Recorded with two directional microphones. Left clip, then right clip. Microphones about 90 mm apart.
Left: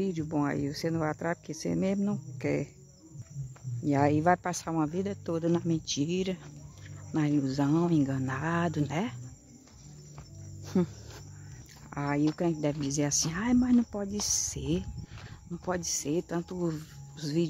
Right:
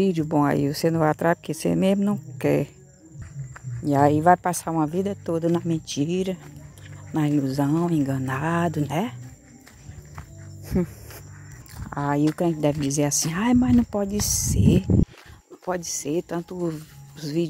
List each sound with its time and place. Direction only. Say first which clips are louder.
0.2 s speech: right 9 dB; 25° right (ahead or behind)
0.5 s speech: right 10 dB; 35° right (ahead or behind)
3.8 s speech: right 8 dB; 10° right (ahead or behind)
7.1 s speech: right 5 dB; 10° right (ahead or behind)
11.9 s speech: right 7 dB; 5° right (ahead or behind)
12.2 s speech: right 6 dB; 15° right (ahead or behind)